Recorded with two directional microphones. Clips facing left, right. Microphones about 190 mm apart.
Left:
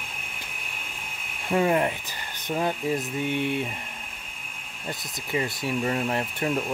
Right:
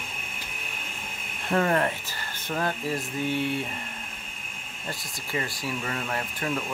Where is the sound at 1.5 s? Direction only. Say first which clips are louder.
Left 2 dB; 10° left (ahead or behind).